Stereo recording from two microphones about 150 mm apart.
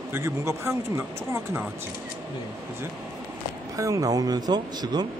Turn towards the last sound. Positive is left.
turn(degrees=-25)  # may be behind; listen again after turning